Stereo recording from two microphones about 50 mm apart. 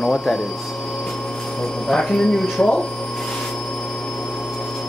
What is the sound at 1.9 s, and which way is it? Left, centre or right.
Speech, centre.